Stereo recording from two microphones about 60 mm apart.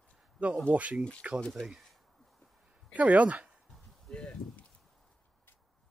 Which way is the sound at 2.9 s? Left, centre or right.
Right.